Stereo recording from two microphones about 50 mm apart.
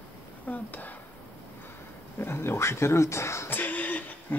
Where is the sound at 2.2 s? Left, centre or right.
Left.